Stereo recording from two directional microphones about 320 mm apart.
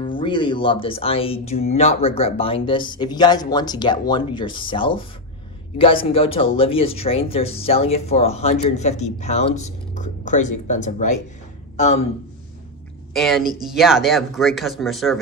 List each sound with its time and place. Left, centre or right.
0.0 s speech: centre
9.9 s music: left
10.7 s a man's voice: left
13.1 s speech: centre